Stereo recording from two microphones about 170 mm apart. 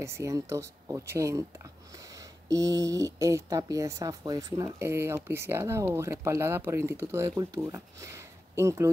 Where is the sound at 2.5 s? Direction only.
20° right (ahead or behind).